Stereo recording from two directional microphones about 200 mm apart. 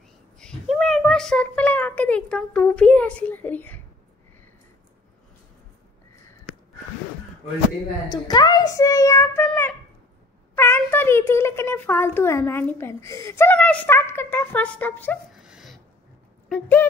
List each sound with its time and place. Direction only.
0.4 s a child's voice: 5° left (ahead or behind)
8.1 s a child's voice: 20° left (ahead or behind)
15.3 s a sound: centre (ahead or behind)
16.4 s speech: 5° left (ahead or behind)